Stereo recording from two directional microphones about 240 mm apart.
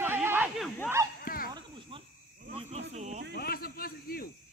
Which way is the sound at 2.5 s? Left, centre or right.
Right.